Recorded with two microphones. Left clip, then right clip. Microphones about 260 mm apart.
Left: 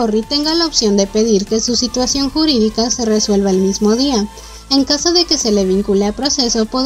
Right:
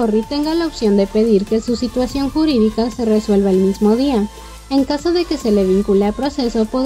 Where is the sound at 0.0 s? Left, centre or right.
Left.